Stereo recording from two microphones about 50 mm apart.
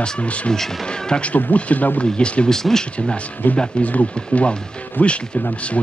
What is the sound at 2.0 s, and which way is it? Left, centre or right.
Speech, centre.